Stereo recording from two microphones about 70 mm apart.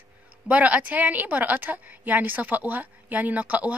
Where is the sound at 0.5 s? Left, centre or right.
Right.